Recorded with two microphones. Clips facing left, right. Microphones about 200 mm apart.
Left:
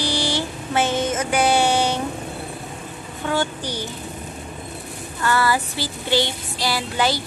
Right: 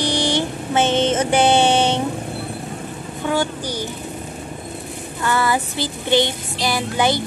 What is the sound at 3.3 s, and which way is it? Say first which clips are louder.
Speech: right 2 dB; 15° right (ahead or behind).